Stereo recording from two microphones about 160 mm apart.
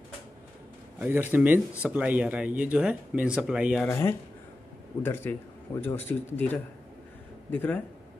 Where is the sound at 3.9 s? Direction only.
15° left (ahead or behind).